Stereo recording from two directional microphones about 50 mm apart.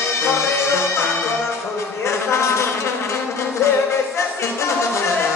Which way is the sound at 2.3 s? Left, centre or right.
Left.